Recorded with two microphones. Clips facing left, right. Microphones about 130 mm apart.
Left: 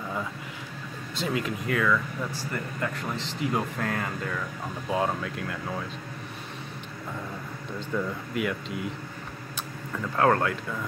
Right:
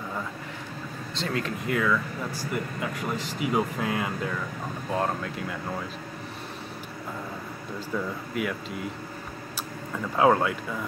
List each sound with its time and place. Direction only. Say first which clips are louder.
1.2 s speech: left 1 dB; 5° left (ahead or behind)
7.9 s speech: left 1 dB; centre (ahead or behind)